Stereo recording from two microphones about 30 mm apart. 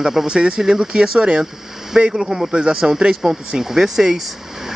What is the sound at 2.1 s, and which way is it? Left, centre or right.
Speech, centre.